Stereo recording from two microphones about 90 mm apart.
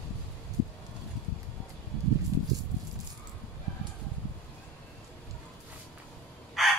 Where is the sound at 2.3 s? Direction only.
35° right (ahead or behind).